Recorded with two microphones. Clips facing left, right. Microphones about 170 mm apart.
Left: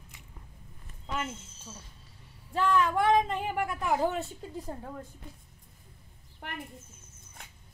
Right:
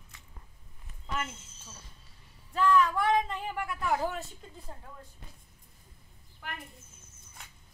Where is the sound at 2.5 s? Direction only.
25° left (ahead or behind).